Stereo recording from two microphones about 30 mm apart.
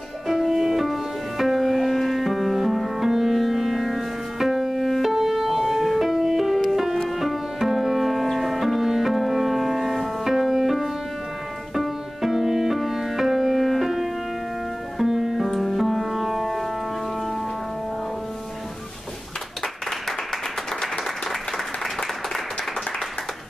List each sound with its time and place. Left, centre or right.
0.3 s music: centre